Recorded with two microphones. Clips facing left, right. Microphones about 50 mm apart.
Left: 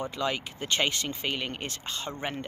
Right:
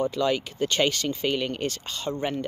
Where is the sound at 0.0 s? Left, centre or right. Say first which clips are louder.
Right 6 dB; centre.